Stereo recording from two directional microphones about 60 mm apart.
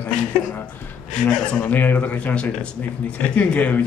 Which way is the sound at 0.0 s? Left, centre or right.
Left.